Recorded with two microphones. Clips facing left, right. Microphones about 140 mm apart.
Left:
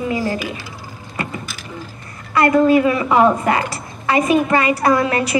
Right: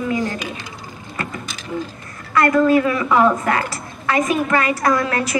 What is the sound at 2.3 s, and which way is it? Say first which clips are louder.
A woman's voice: left 2 dB; 15° left (ahead or behind).